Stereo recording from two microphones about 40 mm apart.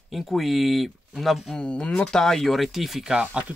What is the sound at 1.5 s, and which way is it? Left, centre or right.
Speech, left.